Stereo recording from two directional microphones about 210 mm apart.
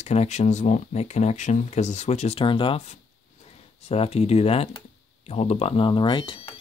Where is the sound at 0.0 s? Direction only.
30° left (ahead or behind).